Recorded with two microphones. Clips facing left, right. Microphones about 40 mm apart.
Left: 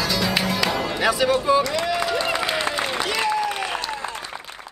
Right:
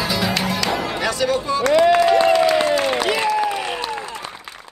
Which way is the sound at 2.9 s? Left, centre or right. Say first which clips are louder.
Right 5 dB; right.